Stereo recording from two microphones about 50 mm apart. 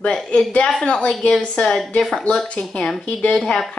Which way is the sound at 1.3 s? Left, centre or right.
Centre.